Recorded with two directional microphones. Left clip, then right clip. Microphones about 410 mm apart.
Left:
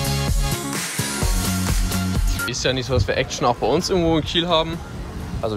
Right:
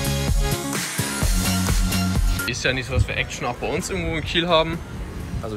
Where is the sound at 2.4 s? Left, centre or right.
Centre.